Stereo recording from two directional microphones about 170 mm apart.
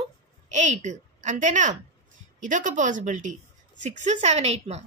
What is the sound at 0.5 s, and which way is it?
A woman's voice, 45° right (ahead or behind).